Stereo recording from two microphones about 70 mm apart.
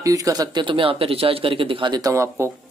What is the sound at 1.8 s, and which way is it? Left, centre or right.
Speech, right.